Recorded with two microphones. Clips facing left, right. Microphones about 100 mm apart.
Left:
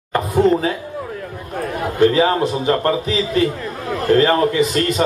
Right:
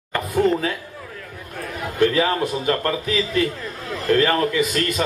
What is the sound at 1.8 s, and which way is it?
A man's voice, 30° left (ahead or behind).